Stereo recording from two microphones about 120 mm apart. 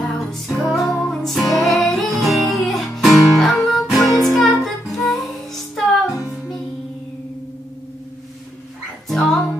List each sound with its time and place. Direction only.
0.0 s music: centre (ahead or behind)
9.1 s music: centre (ahead or behind)